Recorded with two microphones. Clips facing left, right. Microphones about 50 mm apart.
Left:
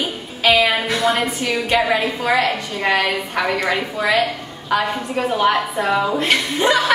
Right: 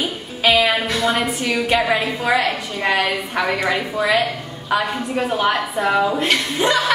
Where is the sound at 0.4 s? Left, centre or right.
Centre.